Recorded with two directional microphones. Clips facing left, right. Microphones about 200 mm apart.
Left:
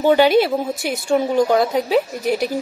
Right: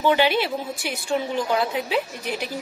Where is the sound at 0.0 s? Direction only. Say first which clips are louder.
Left 7 dB; 45° left (ahead or behind).